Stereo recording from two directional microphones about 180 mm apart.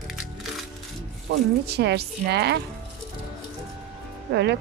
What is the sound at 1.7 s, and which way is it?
Speech, 65° right (ahead or behind).